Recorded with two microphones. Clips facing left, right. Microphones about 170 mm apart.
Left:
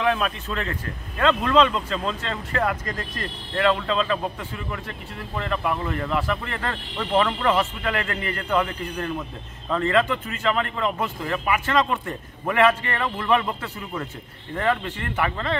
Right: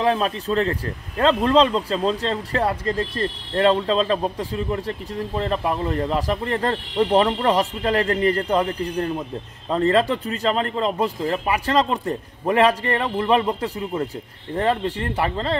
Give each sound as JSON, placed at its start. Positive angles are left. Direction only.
{"t": 0.0, "sound": "speech", "side_deg": -35}